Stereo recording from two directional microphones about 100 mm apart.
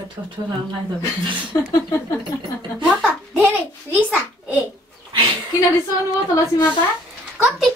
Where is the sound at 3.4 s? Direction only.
15° right (ahead or behind).